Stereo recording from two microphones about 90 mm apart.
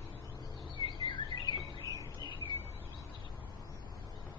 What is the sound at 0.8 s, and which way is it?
Chirp, 65° left (ahead or behind).